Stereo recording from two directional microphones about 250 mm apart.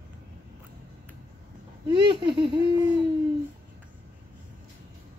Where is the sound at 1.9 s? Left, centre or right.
Centre.